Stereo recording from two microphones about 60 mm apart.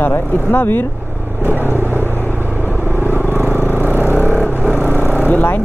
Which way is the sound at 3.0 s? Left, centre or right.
Left.